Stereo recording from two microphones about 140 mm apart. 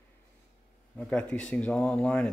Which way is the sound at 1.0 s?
10° left (ahead or behind).